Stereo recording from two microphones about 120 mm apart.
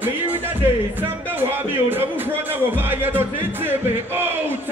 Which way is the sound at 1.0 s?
15° right (ahead or behind).